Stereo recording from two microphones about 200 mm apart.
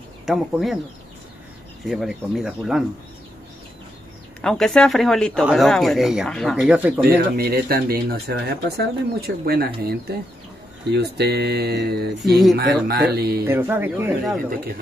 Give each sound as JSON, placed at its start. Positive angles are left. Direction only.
{"t": 0.3, "sound": "speech", "side_deg": 0}
{"t": 1.9, "sound": "speech", "side_deg": 0}
{"t": 4.4, "sound": "speech", "side_deg": 5}
{"t": 7.1, "sound": "speech", "side_deg": -50}
{"t": 10.9, "sound": "speech", "side_deg": -55}
{"t": 12.2, "sound": "speech", "side_deg": 0}
{"t": 12.8, "sound": "speech", "side_deg": -50}
{"t": 13.4, "sound": "speech", "side_deg": -10}